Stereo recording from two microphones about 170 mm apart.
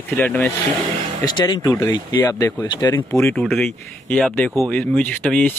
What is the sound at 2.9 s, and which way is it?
Speech, 15° left (ahead or behind).